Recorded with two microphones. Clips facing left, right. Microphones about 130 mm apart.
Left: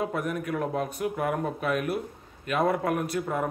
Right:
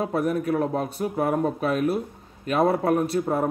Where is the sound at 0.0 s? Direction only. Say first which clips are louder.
Right 5 dB; 35° right (ahead or behind).